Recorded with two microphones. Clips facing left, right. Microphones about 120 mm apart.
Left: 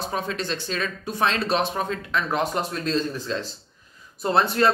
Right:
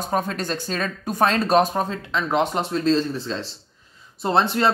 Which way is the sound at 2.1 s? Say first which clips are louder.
Right 3 dB; 25° right (ahead or behind).